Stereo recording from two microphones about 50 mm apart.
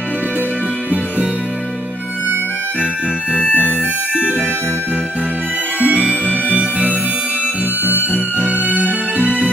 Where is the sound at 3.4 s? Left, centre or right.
Left.